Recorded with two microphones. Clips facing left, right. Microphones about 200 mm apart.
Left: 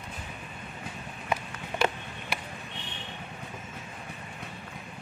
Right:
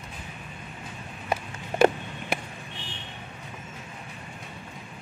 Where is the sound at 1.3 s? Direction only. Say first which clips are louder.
Right 2 dB; 45° right (ahead or behind).